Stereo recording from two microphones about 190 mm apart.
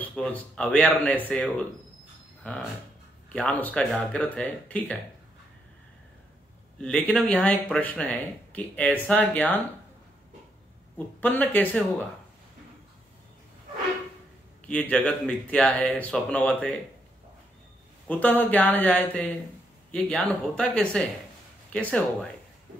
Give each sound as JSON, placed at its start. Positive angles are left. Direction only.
{"t": 0.0, "sound": "speech", "side_deg": 5}
{"t": 6.8, "sound": "speech", "side_deg": 5}
{"t": 11.0, "sound": "speech", "side_deg": 10}
{"t": 14.7, "sound": "speech", "side_deg": 5}
{"t": 18.0, "sound": "speech", "side_deg": 10}